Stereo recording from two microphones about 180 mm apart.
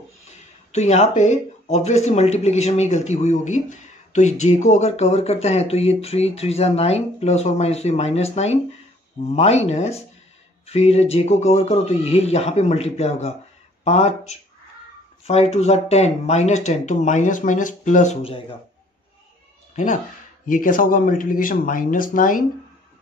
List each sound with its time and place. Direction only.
0.7 s speech: 40° left (ahead or behind)
19.7 s speech: 45° left (ahead or behind)